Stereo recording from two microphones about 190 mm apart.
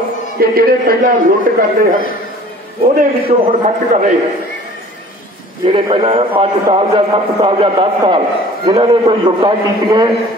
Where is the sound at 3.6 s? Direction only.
35° right (ahead or behind).